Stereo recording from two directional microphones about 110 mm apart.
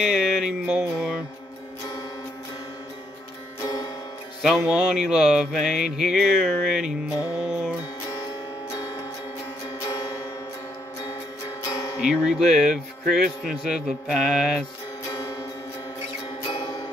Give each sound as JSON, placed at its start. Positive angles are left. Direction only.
{"t": 0.0, "sound": "music", "side_deg": -5}
{"t": 4.4, "sound": "speech", "side_deg": -10}
{"t": 7.3, "sound": "music", "side_deg": -5}
{"t": 9.8, "sound": "music", "side_deg": 40}
{"t": 11.7, "sound": "music", "side_deg": 35}
{"t": 12.0, "sound": "speech", "side_deg": -5}